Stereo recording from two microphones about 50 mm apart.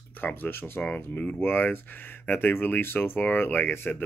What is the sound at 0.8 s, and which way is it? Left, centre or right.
Speech, left.